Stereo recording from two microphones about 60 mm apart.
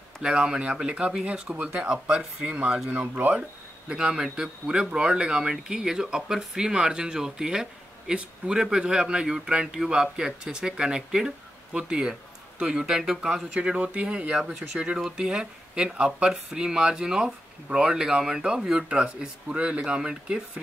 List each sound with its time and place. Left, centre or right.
0.2 s speech: centre
3.9 s speech: centre